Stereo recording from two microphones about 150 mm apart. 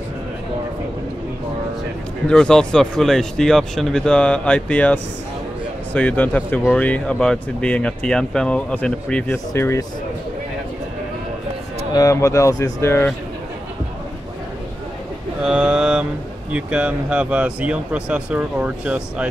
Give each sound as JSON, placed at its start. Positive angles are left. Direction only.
{"t": 2.2, "sound": "speech", "side_deg": 5}
{"t": 9.5, "sound": "speech", "side_deg": 20}
{"t": 11.9, "sound": "speech", "side_deg": 20}
{"t": 15.4, "sound": "speech", "side_deg": -5}